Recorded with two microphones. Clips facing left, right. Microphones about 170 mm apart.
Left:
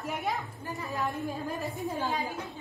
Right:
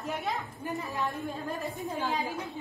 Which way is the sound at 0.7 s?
Centre (ahead or behind).